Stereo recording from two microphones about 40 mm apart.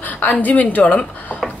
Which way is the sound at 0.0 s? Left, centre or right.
Left.